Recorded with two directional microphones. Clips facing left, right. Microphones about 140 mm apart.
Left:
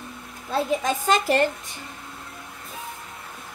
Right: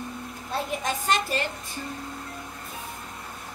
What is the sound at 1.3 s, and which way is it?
Speech, 75° left (ahead or behind).